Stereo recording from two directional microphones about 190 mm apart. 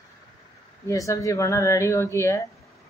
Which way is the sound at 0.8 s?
15° left (ahead or behind).